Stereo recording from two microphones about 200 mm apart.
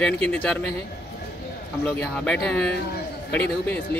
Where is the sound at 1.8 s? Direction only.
5° left (ahead or behind).